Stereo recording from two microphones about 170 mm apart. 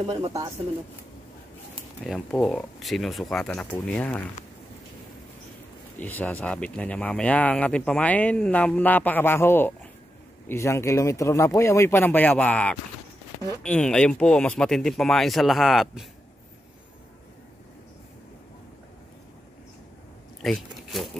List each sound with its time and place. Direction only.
0.0 s speech: 35° right (ahead or behind)
2.0 s speech: 5° left (ahead or behind)
5.9 s speech: 10° left (ahead or behind)
20.4 s speech: centre (ahead or behind)